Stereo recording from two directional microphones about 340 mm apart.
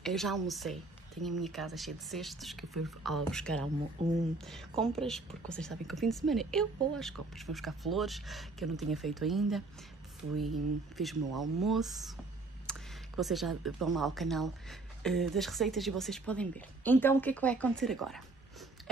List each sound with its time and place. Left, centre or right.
0.0 s speech: centre
4.0 s speech: centre
4.5 s speech: centre
12.7 s a sound: centre
13.2 s speech: centre